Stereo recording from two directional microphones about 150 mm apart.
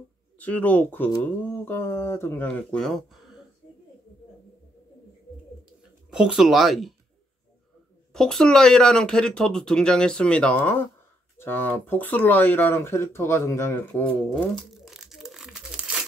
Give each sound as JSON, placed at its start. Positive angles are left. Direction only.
{"t": 0.4, "sound": "speech", "side_deg": 10}
{"t": 6.0, "sound": "speech", "side_deg": -5}
{"t": 8.1, "sound": "speech", "side_deg": 5}
{"t": 14.3, "sound": "crumpling", "side_deg": 0}